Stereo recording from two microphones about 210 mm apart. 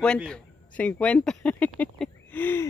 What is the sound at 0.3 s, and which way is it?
Speech, 5° left (ahead or behind).